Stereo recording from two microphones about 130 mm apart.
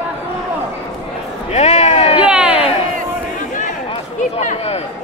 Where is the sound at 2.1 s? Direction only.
10° right (ahead or behind).